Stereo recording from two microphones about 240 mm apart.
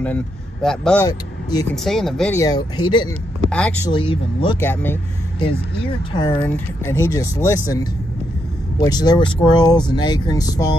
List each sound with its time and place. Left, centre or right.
0.0 s a man's voice: centre
1.0 s speech: centre
1.9 s speech: centre
3.4 s speech: centre
3.9 s speech: centre
4.6 s speech: centre
6.1 s speech: centre
6.4 s speech: centre